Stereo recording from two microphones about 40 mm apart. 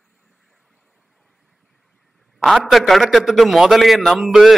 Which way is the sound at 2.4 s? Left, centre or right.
Centre.